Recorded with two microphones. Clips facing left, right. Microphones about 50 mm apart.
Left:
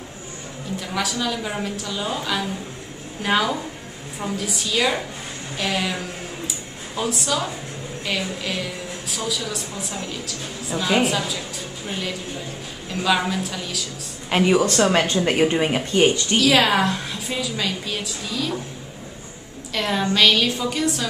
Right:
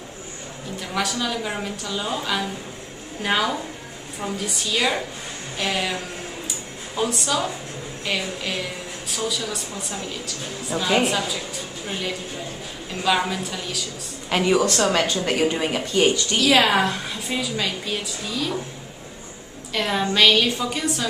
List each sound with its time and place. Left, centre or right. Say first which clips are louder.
0.7 s a woman's voice: even; centre
7.0 s a woman's voice: right 1 dB; centre
13.0 s a woman's voice: left 1 dB; centre
14.3 s speech: left 2 dB; centre; by 16.3 s left
16.3 s a woman's voice: even; centre
19.7 s a woman's voice: even; centre